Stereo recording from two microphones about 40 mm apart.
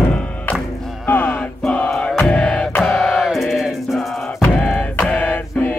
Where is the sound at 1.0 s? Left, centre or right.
Left.